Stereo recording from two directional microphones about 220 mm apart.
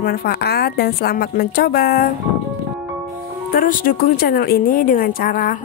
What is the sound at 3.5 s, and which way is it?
A woman's voice, 40° left (ahead or behind).